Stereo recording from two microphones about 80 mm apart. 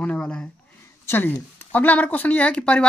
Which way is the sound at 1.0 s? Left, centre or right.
Left.